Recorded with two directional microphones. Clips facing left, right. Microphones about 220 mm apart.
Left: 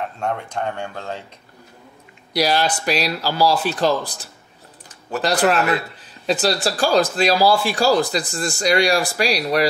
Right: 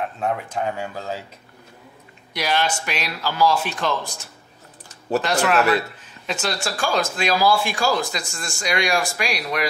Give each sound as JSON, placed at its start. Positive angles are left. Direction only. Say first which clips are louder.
{"t": 0.0, "sound": "speech", "louder": "even", "side_deg": -5}
{"t": 2.3, "sound": "speech", "louder": "left 4 dB", "side_deg": 35}